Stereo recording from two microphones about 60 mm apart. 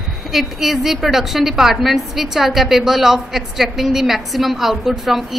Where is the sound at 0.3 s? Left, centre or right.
Centre.